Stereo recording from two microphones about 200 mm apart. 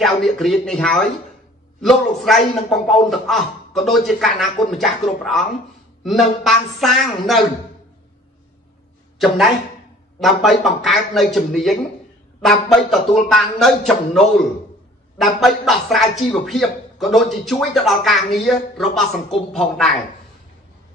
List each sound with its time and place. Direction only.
0.0 s a man's voice: centre (ahead or behind)
10.2 s a man's voice: centre (ahead or behind)